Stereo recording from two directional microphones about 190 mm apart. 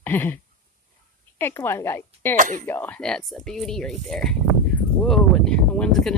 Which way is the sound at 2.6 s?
10° left (ahead or behind).